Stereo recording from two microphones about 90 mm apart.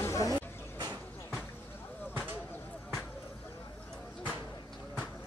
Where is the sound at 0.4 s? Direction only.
55° right (ahead or behind).